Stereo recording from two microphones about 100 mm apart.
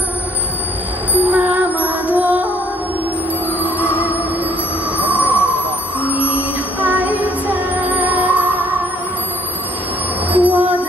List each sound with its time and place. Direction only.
1.1 s music: 15° right (ahead or behind)
3.6 s music: 20° left (ahead or behind)
4.9 s music: 15° right (ahead or behind)
5.9 s music: 15° left (ahead or behind)
6.3 s music: 15° right (ahead or behind)
10.3 s a sound: 15° right (ahead or behind)